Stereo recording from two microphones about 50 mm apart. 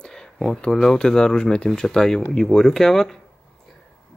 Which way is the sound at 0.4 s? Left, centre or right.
Centre.